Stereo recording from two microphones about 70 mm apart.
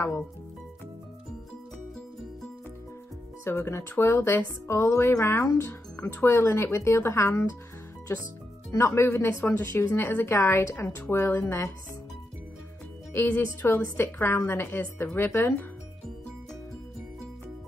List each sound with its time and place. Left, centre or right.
3.4 s a woman's voice: left
8.7 s a woman's voice: left
13.1 s a woman's voice: left